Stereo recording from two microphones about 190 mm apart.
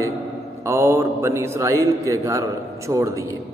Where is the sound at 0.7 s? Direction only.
15° right (ahead or behind).